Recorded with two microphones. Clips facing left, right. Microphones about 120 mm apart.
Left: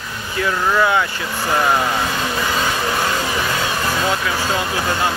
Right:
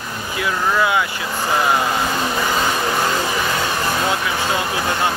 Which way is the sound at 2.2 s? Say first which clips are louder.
Right 1 dB; 15° right (ahead or behind).